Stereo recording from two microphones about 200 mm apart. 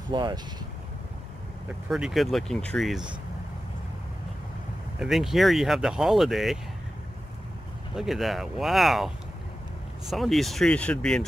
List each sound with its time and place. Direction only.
0.1 s speech: 20° right (ahead or behind)
1.9 s speech: centre (ahead or behind)
4.9 s speech: centre (ahead or behind)
7.9 s speech: centre (ahead or behind)